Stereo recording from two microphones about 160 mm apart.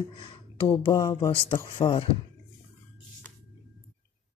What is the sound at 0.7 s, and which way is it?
Speech, 20° left (ahead or behind).